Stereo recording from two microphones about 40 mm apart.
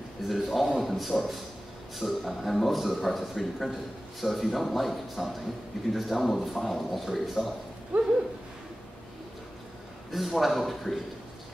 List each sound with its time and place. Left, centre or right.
0.3 s a man's voice: centre
7.9 s a sound: right
10.1 s a man's voice: centre